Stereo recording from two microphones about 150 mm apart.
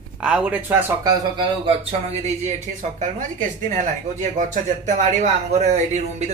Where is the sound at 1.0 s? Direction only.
30° right (ahead or behind).